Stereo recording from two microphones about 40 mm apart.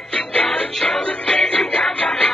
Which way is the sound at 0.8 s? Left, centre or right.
Centre.